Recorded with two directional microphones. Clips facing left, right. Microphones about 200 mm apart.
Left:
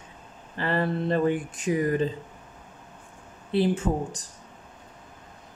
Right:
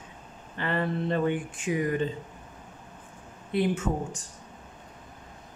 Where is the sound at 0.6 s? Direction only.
35° left (ahead or behind).